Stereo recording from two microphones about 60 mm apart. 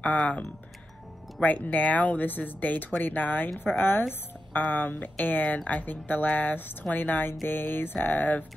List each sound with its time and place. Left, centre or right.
1.4 s speech: left